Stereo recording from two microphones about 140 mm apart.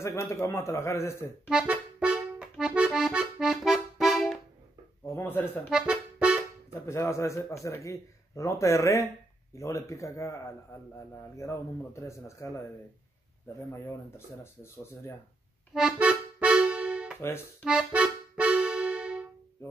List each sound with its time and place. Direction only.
0.0 s a man's voice: 20° left (ahead or behind)
1.5 s accordion: 5° right (ahead or behind)
5.1 s speech: 15° left (ahead or behind)
5.7 s accordion: 5° right (ahead or behind)
6.9 s a man's voice: 20° left (ahead or behind)
13.8 s speech: 20° left (ahead or behind)
15.7 s accordion: 5° right (ahead or behind)
17.2 s speech: 20° left (ahead or behind)
17.6 s accordion: 5° right (ahead or behind)